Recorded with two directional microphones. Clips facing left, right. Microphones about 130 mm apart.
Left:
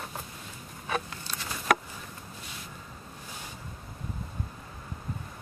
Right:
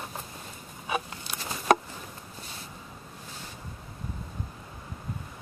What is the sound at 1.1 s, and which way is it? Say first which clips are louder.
Patter: right 1 dB; 25° right (ahead or behind).